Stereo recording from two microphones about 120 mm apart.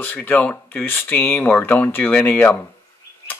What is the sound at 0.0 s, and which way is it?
Speech, 15° left (ahead or behind).